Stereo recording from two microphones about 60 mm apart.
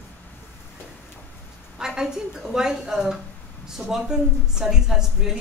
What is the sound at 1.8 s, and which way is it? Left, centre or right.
A woman's voice, centre.